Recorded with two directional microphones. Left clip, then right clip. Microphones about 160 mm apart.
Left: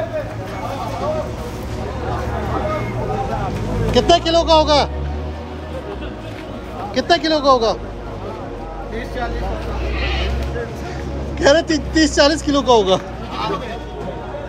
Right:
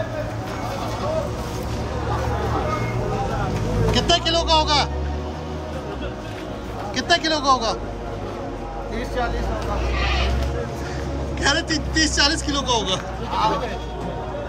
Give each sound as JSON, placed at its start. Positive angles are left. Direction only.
{"t": 3.9, "sound": "speech", "side_deg": -10}
{"t": 7.0, "sound": "speech", "side_deg": -15}
{"t": 11.3, "sound": "speech", "side_deg": 0}
{"t": 13.3, "sound": "sheep", "side_deg": -90}